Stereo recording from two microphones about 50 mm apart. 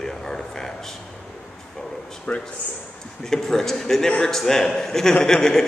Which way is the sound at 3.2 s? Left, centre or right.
Centre.